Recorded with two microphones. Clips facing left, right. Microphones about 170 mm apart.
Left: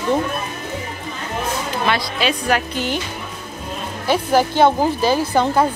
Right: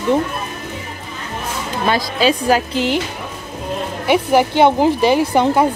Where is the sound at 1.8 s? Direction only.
35° right (ahead or behind).